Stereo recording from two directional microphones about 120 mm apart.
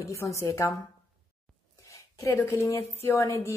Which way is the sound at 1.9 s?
25° left (ahead or behind).